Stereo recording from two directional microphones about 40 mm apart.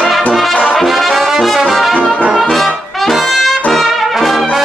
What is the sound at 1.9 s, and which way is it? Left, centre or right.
Brass instrument, left.